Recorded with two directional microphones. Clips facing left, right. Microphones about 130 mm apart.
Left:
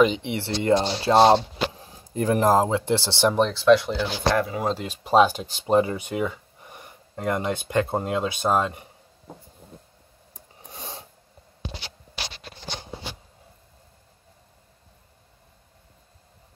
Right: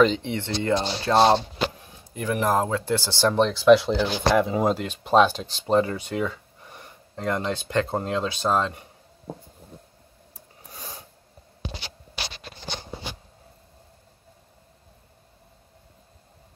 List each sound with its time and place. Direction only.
0.0 s speech: 15° left (ahead or behind)
1.8 s a sound: 35° left (ahead or behind)
2.6 s speech: 25° left (ahead or behind)
3.3 s speech: centre (ahead or behind)
3.6 s speech: 20° right (ahead or behind)
4.7 s speech: 5° left (ahead or behind)
10.6 s a sound: 25° left (ahead or behind)